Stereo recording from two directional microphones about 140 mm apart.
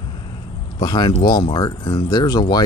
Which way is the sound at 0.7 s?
30° left (ahead or behind).